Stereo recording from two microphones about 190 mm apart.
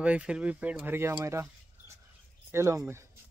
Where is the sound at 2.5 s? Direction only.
15° right (ahead or behind).